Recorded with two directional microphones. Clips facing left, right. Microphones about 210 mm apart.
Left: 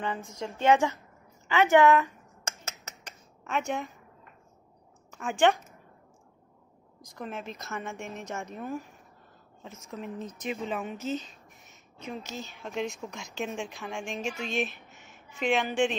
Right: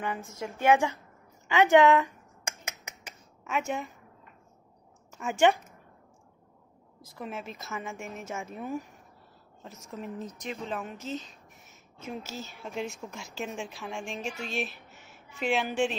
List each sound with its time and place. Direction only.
0.5 s a woman's voice: 15° right (ahead or behind)
2.6 s finger snapping: 15° right (ahead or behind)
5.1 s a woman's voice: 5° right (ahead or behind)
7.0 s speech: 5° right (ahead or behind)
9.8 s speech: centre (ahead or behind)
14.9 s a sound: 40° right (ahead or behind)
15.3 s speech: 5° right (ahead or behind)